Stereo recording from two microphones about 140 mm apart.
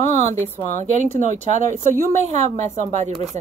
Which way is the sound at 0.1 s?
55° right (ahead or behind).